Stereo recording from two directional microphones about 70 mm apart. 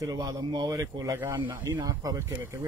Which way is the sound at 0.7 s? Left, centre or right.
Right.